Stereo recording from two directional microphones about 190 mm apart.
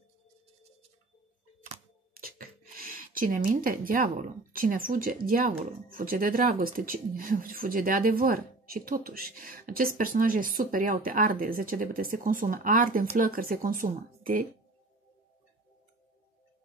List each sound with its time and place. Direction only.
2.1 s speech: 50° right (ahead or behind)